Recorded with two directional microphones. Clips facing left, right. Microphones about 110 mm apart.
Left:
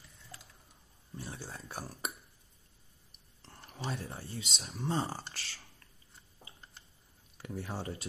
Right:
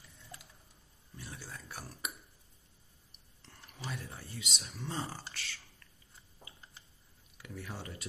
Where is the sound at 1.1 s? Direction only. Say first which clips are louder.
Left 4 dB; 30° left (ahead or behind).